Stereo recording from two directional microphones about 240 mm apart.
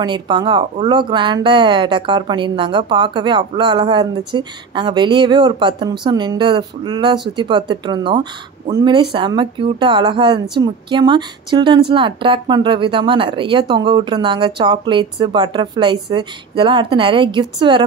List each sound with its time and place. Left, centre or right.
0.0 s speech: centre